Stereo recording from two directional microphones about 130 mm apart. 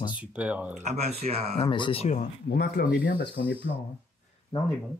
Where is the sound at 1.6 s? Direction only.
40° left (ahead or behind).